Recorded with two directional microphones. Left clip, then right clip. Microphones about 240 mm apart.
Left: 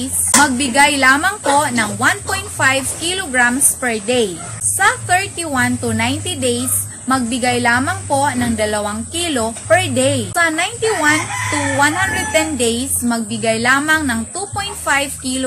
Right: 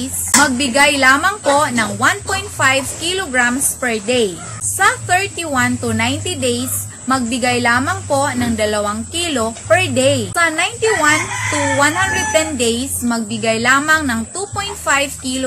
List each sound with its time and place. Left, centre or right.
0.0 s a woman's voice: centre